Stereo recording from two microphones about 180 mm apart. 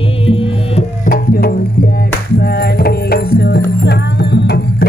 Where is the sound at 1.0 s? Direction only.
55° left (ahead or behind).